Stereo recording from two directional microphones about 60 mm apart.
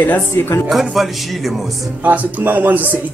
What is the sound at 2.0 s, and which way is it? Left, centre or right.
Speech, right.